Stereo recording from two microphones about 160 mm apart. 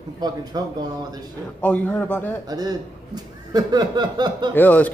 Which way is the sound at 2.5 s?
25° right (ahead or behind).